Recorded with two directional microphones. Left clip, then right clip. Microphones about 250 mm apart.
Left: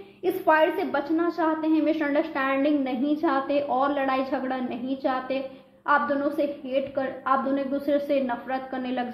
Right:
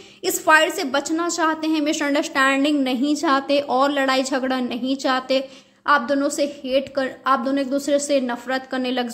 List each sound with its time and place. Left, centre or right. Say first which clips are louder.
0.2 s a woman's voice: right 5 dB; right